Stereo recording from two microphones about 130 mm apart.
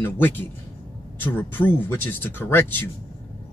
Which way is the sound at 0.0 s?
15° left (ahead or behind).